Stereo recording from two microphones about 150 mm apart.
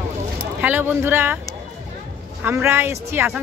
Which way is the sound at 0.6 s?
15° right (ahead or behind).